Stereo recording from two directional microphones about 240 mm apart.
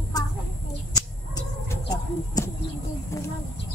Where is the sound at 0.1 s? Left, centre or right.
Centre.